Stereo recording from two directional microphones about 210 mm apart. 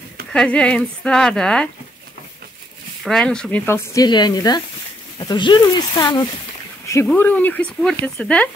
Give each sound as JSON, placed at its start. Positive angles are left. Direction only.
{"t": 0.3, "sound": "speech", "side_deg": 5}
{"t": 3.0, "sound": "speech", "side_deg": 5}